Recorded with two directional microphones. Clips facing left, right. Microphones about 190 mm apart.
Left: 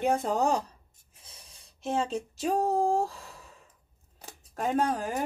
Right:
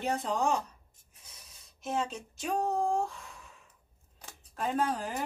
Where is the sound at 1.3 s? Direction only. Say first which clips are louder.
Left 3 dB; 30° left (ahead or behind).